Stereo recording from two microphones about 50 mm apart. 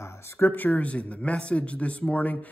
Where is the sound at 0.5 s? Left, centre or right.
Left.